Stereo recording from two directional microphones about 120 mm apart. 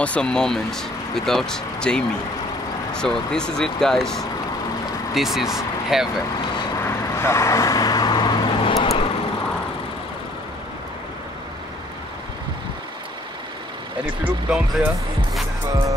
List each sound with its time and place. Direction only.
0.0 s speech: 10° left (ahead or behind)
6.8 s vehicle: 20° left (ahead or behind); by 8.7 s 45° left (ahead or behind)
8.7 s vehicle: 60° left (ahead or behind)
14.5 s speech: 5° right (ahead or behind)